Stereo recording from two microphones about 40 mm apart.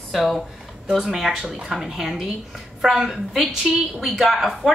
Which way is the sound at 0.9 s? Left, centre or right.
Centre.